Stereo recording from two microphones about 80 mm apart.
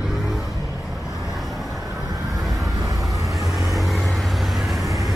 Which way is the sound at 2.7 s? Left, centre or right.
Right.